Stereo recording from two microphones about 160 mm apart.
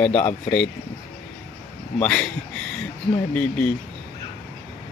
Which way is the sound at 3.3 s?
10° left (ahead or behind).